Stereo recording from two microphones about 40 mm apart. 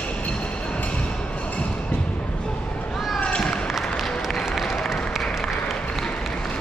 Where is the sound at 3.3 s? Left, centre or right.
Left.